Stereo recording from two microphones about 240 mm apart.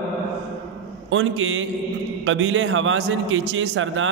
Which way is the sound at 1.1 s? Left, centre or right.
Right.